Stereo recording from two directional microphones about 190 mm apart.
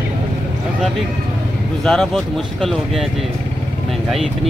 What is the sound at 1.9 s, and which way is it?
Speech, 5° left (ahead or behind).